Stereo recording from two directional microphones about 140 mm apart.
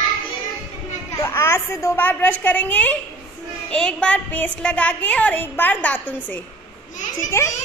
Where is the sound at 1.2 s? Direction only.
15° left (ahead or behind).